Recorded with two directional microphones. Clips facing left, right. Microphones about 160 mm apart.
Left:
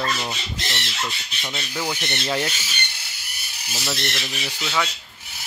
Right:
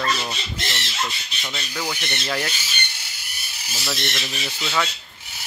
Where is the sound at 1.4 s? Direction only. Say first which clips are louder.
Left 1 dB; 10° left (ahead or behind).